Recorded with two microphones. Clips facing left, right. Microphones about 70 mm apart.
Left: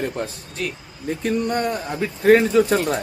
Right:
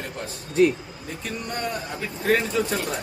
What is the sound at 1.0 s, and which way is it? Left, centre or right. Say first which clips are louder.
Speech: left 11 dB; left.